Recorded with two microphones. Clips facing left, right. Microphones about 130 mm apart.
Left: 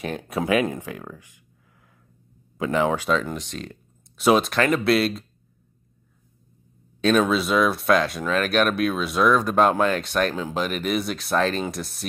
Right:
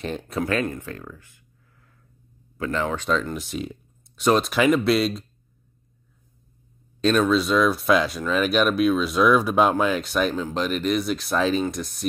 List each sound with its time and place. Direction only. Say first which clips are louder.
0.0 s speech: even; 5° left (ahead or behind)
2.5 s speech: left 4 dB; 15° left (ahead or behind)
3.0 s speech: left 1 dB; 5° left (ahead or behind)
7.0 s speech: even; 5° left (ahead or behind)